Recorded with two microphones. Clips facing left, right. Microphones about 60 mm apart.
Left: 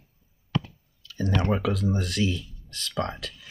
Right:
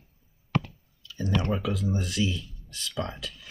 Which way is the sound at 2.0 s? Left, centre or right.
Left.